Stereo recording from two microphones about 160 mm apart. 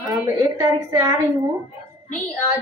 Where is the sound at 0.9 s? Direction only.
20° right (ahead or behind).